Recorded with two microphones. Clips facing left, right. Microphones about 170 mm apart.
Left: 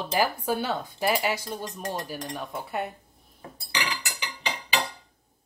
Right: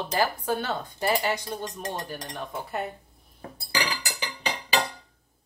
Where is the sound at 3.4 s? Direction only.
35° right (ahead or behind).